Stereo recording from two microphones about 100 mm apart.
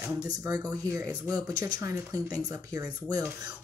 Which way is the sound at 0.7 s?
35° right (ahead or behind).